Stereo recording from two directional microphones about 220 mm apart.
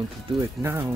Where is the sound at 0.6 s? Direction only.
10° right (ahead or behind).